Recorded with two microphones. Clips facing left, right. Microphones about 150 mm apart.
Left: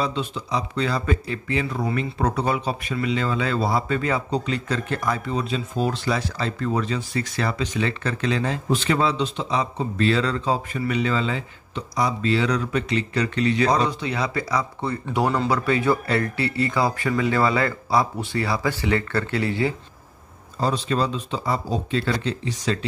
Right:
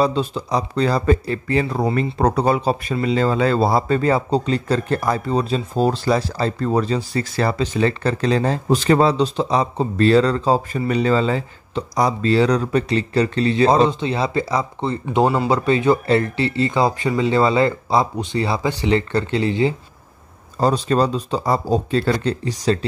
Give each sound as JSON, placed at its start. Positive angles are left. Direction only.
{"t": 0.0, "sound": "speech", "side_deg": -35}
{"t": 20.5, "sound": "speech", "side_deg": -45}